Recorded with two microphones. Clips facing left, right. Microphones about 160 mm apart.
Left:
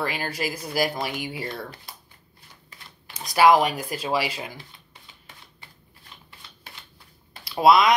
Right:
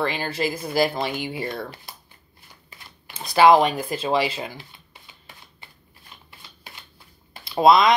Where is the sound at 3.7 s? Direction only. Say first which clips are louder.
Right 4 dB; 25° right (ahead or behind).